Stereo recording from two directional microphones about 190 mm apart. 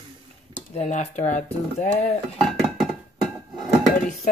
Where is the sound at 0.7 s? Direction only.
35° left (ahead or behind).